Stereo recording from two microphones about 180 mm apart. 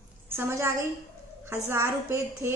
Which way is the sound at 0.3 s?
15° right (ahead or behind).